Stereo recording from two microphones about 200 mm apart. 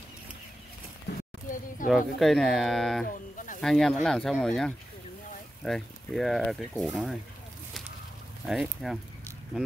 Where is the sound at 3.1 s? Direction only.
40° left (ahead or behind).